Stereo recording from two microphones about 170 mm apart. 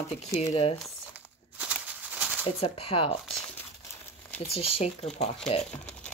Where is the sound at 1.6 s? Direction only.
5° right (ahead or behind).